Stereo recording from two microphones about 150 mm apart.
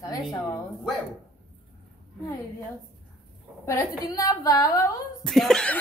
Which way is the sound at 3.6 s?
20° left (ahead or behind).